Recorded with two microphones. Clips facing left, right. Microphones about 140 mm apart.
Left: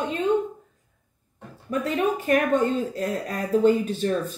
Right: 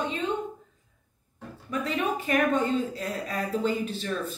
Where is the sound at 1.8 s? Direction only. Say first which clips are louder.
Left 4 dB; 50° left (ahead or behind).